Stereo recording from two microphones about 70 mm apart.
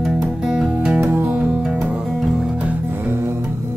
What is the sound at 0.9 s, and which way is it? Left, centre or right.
Music, right.